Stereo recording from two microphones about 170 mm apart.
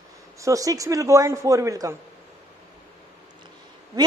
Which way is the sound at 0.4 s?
20° right (ahead or behind).